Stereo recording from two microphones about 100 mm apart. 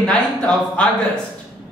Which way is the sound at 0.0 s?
10° left (ahead or behind).